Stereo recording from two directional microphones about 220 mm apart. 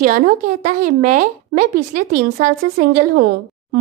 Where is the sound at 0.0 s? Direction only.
35° right (ahead or behind).